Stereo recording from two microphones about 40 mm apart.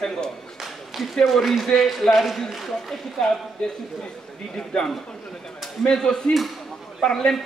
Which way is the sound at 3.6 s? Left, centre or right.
Left.